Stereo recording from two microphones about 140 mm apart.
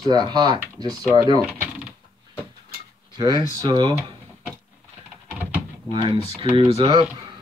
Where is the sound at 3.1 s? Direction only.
30° right (ahead or behind).